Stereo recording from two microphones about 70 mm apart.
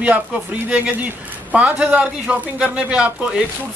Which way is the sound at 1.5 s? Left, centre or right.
Centre.